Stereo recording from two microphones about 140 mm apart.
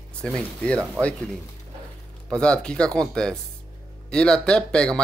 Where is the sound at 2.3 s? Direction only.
5° left (ahead or behind).